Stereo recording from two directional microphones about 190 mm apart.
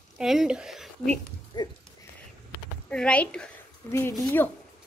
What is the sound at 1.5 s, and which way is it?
Speech, 20° left (ahead or behind).